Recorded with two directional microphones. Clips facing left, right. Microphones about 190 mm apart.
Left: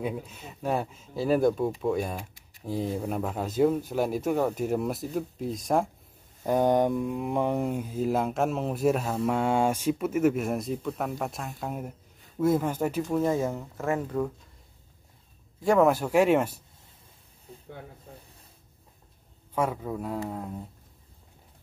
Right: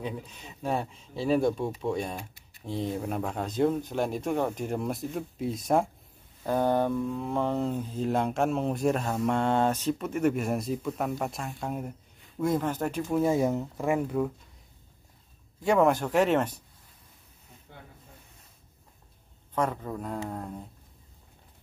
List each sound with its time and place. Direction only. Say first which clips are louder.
0.0 s speech: left 4 dB; 5° left (ahead or behind)
6.4 s speech: left 3 dB; 15° left (ahead or behind)
13.1 s speech: right 4 dB; 10° right (ahead or behind)
15.6 s speech: left 1 dB; centre (ahead or behind)
17.5 s snake: left 9 dB; 30° left (ahead or behind)
19.5 s speech: left 1 dB; 5° left (ahead or behind)